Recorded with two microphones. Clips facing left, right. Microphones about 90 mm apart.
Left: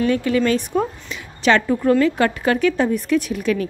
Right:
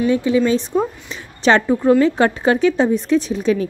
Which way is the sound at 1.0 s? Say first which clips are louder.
Right 2 dB; 30° right (ahead or behind).